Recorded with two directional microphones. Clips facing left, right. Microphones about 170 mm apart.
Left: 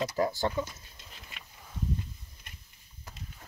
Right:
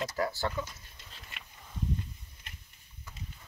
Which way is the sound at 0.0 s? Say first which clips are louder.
Left 3 dB; 15° left (ahead or behind).